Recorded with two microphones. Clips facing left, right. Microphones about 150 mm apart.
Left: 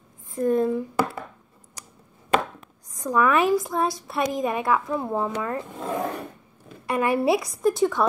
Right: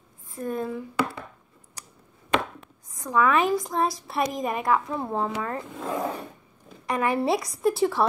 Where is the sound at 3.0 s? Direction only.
10° left (ahead or behind).